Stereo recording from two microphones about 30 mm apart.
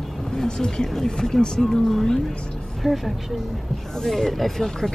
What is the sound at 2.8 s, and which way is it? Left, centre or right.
A woman's voice, centre.